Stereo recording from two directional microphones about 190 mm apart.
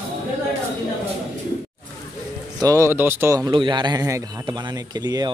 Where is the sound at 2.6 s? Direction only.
15° right (ahead or behind).